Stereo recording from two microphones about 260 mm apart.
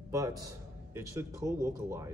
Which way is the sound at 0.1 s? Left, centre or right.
Centre.